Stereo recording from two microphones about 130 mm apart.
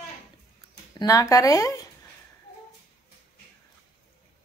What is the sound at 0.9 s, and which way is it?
Speech, 25° left (ahead or behind).